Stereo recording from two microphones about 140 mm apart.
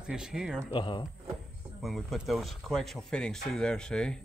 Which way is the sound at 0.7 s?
35° left (ahead or behind).